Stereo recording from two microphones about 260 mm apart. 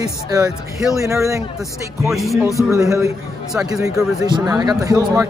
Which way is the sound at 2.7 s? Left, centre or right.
Centre.